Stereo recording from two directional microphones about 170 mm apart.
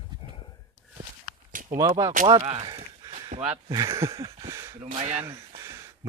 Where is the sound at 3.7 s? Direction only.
20° right (ahead or behind).